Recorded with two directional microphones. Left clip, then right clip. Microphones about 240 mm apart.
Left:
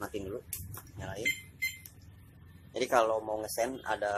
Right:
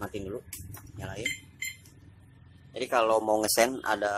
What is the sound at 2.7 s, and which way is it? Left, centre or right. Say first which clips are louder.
Speech: right 1 dB; centre.